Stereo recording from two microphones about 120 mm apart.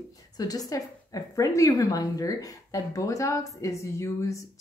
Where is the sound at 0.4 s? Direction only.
30° left (ahead or behind).